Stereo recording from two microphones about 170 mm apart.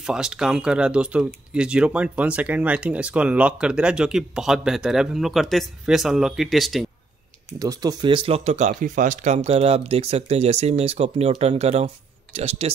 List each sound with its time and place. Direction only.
0.0 s speech: 5° right (ahead or behind)
7.5 s speech: 20° right (ahead or behind); by 12.7 s 35° right (ahead or behind)